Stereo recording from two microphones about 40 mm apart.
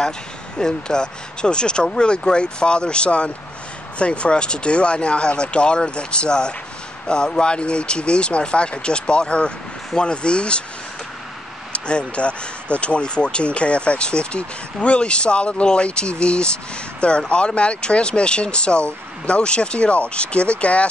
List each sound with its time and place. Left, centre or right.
0.6 s speech: centre
11.7 s speech: left